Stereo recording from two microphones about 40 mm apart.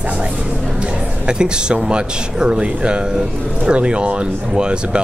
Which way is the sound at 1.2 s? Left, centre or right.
Right.